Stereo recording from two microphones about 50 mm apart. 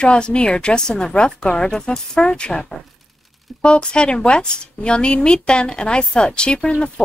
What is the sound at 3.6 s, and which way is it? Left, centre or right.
A woman's voice, centre.